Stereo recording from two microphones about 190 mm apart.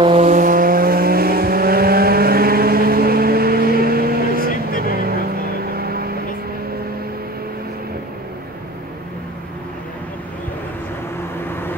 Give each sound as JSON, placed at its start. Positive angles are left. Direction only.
{"t": 0.0, "sound": "vehicle", "side_deg": -35}